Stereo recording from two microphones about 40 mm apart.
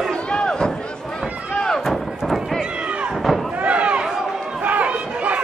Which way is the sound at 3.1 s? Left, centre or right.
Centre.